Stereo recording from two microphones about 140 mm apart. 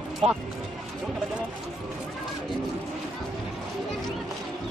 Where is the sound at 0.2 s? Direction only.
50° right (ahead or behind).